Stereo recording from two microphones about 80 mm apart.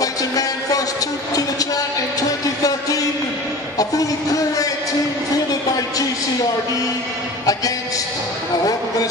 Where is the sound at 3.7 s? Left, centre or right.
Left.